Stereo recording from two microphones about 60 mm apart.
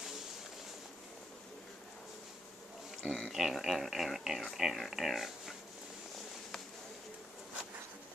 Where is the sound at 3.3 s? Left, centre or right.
Centre.